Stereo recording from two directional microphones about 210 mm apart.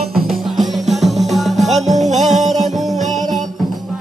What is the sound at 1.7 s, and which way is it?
Music, 35° right (ahead or behind).